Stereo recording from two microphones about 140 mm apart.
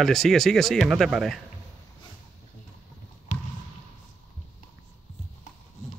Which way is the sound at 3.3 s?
60° left (ahead or behind).